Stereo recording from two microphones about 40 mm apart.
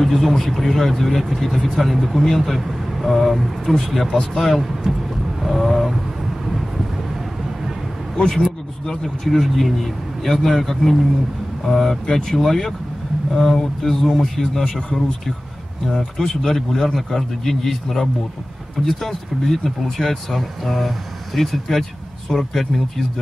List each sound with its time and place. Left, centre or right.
0.0 s a man's voice: centre
2.1 s a man's voice: centre
5.4 s vehicle: centre
8.8 s a man's voice: centre
14.6 s speech: left
15.9 s a man's voice: centre